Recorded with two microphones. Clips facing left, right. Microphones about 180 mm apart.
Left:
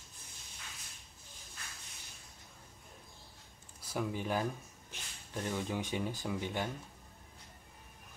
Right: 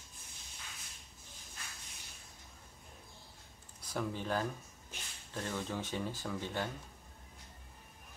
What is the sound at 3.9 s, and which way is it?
Speech, 10° left (ahead or behind).